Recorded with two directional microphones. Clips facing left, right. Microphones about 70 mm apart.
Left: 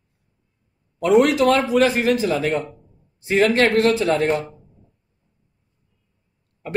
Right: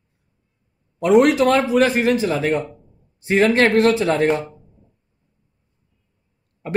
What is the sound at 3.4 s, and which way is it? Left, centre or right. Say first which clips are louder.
Speech: right 1 dB; right.